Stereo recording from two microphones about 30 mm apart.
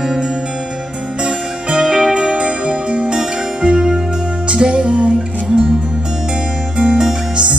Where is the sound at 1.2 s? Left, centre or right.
Right.